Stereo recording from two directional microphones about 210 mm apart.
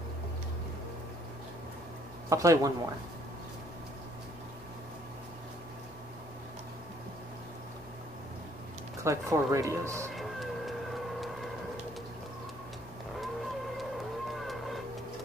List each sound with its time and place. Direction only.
2.2 s speech: 15° right (ahead or behind)
9.0 s speech: 15° right (ahead or behind)
10.1 s vehicle: centre (ahead or behind)
14.4 s music: centre (ahead or behind)